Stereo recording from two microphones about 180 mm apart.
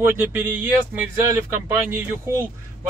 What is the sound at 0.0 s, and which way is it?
Speech, 10° right (ahead or behind).